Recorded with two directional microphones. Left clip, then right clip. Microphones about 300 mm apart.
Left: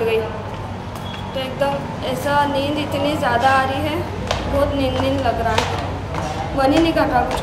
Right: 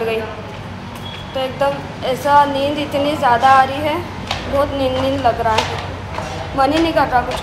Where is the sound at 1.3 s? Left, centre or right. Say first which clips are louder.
Right 3 dB; centre.